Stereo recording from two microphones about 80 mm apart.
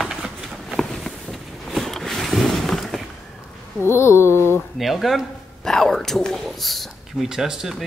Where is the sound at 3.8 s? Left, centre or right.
Left.